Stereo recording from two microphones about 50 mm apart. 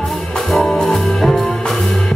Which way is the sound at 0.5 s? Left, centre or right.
Centre.